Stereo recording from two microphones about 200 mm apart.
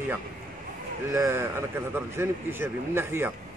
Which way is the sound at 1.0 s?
15° right (ahead or behind).